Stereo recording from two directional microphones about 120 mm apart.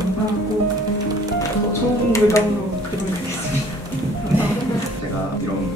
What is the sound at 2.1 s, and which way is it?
Speech, 25° left (ahead or behind).